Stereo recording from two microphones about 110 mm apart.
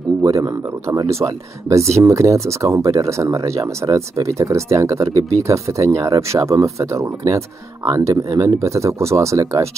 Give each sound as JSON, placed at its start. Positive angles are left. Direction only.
{"t": 0.2, "sound": "speech", "side_deg": -30}